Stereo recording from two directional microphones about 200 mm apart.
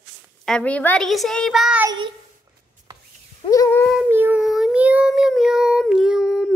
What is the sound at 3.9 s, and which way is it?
A woman's voice, 10° right (ahead or behind).